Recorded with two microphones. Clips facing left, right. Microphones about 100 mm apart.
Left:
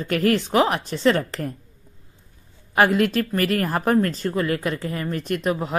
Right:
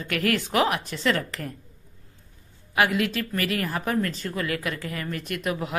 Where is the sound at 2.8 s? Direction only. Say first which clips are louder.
Left 5 dB; 40° left (ahead or behind).